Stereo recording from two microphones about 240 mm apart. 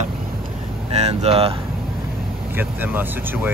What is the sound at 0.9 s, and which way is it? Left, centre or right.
Speech, right.